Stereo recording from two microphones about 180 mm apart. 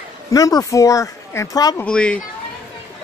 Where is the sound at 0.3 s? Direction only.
20° left (ahead or behind).